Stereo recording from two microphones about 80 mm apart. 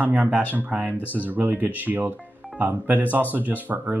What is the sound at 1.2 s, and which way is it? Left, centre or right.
Speech, right.